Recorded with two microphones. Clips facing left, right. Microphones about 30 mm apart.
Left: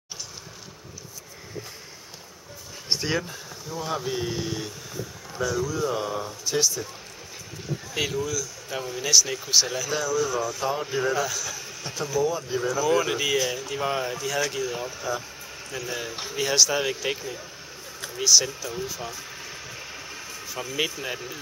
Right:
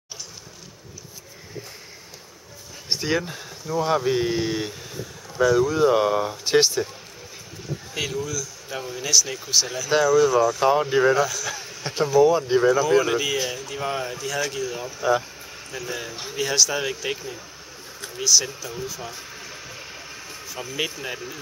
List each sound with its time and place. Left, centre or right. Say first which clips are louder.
2.9 s a sound: right 2 dB; centre
3.7 s speech: right 8 dB; right
7.9 s speech: left 1 dB; centre
10.6 s speech: right 8 dB; right
11.5 s speech: right 5 dB; right
13.0 s speech: right 1 dB; centre
19.2 s vehicle: even; centre